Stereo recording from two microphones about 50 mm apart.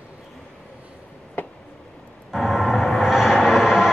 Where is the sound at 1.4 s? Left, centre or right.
Left.